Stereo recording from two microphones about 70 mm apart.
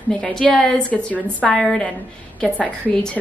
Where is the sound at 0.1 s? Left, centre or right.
Centre.